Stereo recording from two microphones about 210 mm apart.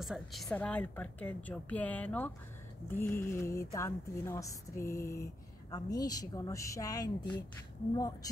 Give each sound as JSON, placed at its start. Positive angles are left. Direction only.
{"t": 0.0, "sound": "a woman's voice", "side_deg": 0}
{"t": 3.0, "sound": "a sound", "side_deg": 40}
{"t": 3.3, "sound": "a woman's voice", "side_deg": 15}